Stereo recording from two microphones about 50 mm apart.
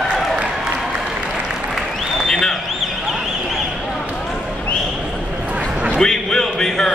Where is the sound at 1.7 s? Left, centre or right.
Centre.